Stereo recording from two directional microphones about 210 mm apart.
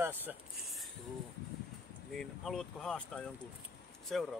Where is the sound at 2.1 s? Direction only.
Centre (ahead or behind).